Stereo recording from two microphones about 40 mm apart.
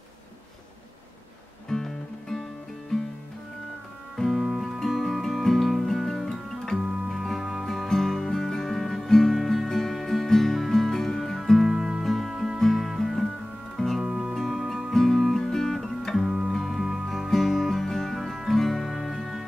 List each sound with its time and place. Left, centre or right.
1.7 s music: centre
4.4 s music: centre
4.7 s music: centre
11.7 s music: centre
12.0 s music: centre
14.0 s music: centre
14.3 s music: centre
14.9 s guitar: centre
16.3 s music: centre
16.5 s music: centre
17.1 s music: centre